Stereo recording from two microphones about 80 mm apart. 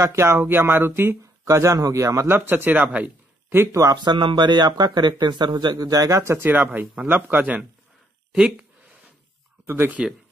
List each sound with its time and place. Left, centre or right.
0.0 s speech: right
1.4 s a man's voice: right; by 3.5 s centre
3.5 s speech: right
4.0 s speech: right
5.8 s a man's voice: right
8.3 s speech: centre
9.7 s speech: right